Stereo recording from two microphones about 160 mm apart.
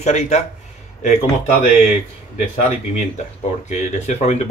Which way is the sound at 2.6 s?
45° left (ahead or behind).